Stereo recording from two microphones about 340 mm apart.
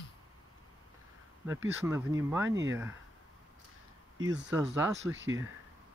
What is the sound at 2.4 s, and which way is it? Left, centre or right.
Speech, right.